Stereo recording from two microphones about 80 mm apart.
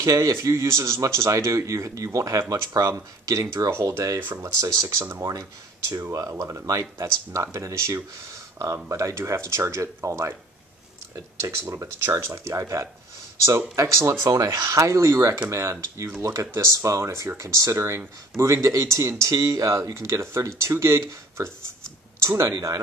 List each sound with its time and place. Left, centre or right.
0.0 s speech: right
4.2 s speech: right
4.6 s speech: right
22.2 s speech: right
22.5 s speech: right